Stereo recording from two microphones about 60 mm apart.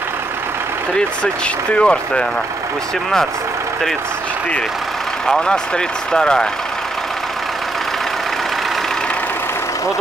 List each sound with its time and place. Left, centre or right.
0.9 s speech: centre
5.2 s speech: centre